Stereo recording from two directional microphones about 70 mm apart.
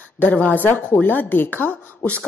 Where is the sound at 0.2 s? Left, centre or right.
Left.